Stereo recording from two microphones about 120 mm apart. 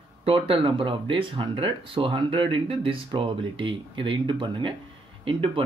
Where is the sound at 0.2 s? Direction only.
45° right (ahead or behind).